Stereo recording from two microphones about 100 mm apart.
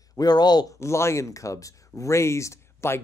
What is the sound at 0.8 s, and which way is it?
Speech, 30° left (ahead or behind).